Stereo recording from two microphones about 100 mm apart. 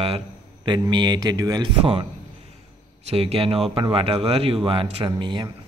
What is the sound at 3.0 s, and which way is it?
Speech, 85° right.